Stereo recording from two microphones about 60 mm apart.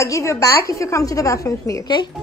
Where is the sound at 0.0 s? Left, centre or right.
Left.